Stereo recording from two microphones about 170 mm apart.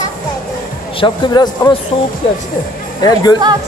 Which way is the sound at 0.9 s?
25° left (ahead or behind).